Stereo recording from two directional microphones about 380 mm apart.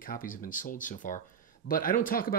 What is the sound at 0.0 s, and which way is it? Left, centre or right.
Speech, left.